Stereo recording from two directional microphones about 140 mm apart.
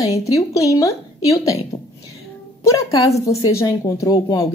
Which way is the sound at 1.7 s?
25° left (ahead or behind).